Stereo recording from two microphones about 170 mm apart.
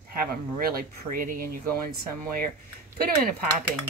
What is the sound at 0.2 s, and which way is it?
Speech, 60° right (ahead or behind).